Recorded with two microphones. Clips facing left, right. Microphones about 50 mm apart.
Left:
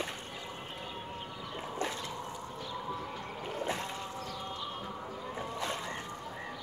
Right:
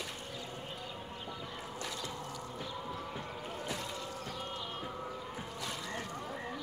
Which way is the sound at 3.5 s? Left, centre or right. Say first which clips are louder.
Left 6 dB; left.